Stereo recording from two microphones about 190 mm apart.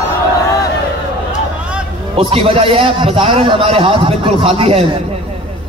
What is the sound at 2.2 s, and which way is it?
A man's voice, 30° right (ahead or behind).